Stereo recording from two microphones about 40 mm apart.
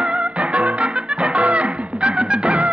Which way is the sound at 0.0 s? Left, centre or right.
Right.